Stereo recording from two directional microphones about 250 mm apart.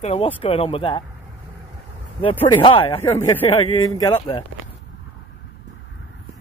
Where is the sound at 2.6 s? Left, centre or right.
Centre.